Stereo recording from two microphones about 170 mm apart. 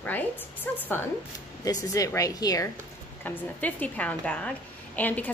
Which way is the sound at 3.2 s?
10° left (ahead or behind).